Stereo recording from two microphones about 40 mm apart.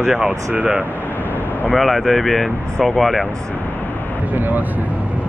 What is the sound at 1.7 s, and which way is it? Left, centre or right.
Speech, centre.